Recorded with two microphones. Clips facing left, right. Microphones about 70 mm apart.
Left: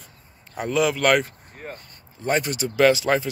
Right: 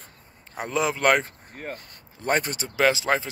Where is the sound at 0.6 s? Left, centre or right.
Right.